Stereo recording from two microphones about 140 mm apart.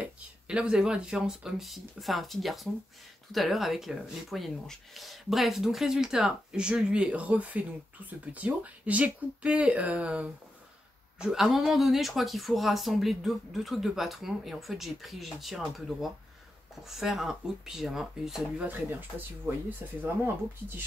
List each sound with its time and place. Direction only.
0.0 s speech: 5° right (ahead or behind)